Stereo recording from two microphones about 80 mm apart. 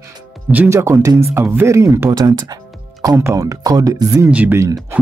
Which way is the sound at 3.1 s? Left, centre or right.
Right.